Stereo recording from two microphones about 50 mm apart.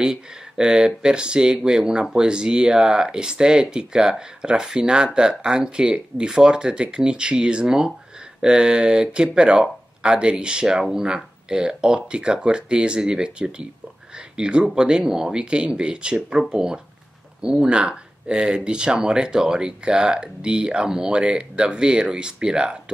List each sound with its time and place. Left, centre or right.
0.0 s speech: centre